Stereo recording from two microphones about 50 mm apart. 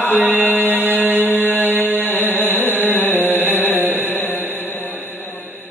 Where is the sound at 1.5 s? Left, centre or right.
Left.